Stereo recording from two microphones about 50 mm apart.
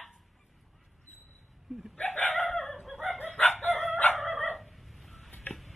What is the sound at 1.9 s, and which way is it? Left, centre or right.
Chicken, left.